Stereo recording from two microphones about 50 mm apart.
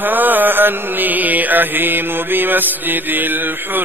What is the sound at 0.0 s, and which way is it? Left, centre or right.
Mantra, right.